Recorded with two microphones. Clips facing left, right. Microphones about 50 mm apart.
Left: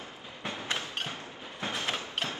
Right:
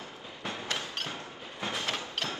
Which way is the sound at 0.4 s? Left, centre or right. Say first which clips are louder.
Left 1 dB; left.